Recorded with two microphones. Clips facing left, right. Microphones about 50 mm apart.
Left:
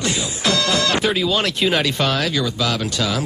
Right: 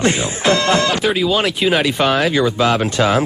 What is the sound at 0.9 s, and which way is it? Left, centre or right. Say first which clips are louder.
Speech: right 2 dB; centre.